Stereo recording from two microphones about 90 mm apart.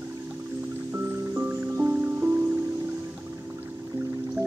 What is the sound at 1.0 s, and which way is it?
Music, 30° right (ahead or behind).